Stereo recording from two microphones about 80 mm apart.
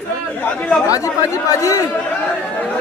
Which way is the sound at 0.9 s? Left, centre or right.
Left.